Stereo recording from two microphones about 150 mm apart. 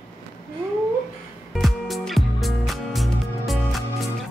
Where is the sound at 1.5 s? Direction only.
Centre (ahead or behind).